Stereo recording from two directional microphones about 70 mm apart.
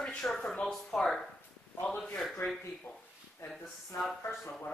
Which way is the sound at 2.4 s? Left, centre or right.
Left.